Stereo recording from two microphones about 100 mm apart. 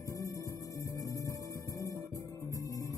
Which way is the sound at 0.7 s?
35° left (ahead or behind).